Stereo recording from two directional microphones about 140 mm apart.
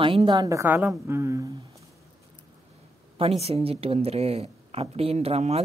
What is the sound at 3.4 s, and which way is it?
A woman's voice, 45° right (ahead or behind).